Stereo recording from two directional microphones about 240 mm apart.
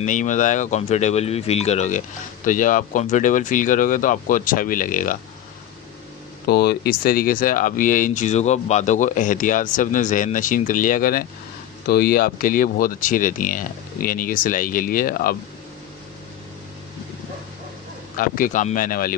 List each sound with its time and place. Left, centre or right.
0.0 s speech: left
6.4 s speech: left
18.1 s speech: left